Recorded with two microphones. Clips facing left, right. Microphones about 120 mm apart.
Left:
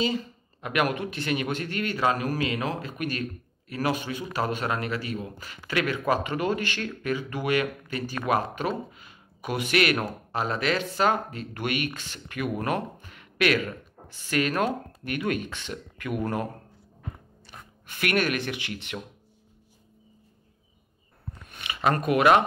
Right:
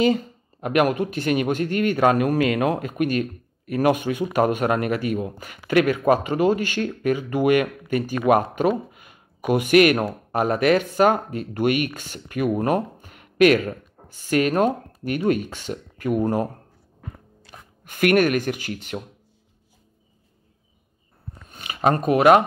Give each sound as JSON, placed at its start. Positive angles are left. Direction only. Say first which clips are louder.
{"t": 0.0, "sound": "speech", "louder": "right 8 dB", "side_deg": -50}
{"t": 13.0, "sound": "a sound", "louder": "right 9 dB", "side_deg": -45}
{"t": 15.0, "sound": "speech", "louder": "right 7 dB", "side_deg": -40}
{"t": 17.8, "sound": "speech", "louder": "right 8 dB", "side_deg": -50}
{"t": 21.5, "sound": "a sound", "louder": "right 5 dB", "side_deg": -40}
{"t": 22.0, "sound": "speech", "louder": "right 5 dB", "side_deg": -40}